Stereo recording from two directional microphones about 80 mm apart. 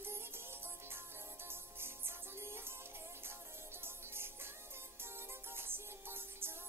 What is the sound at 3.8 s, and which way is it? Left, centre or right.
Music, right.